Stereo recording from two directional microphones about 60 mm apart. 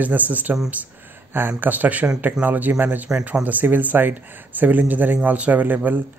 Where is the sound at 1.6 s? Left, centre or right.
Right.